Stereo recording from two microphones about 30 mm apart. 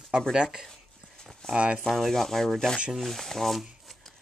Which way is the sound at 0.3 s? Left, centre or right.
Right.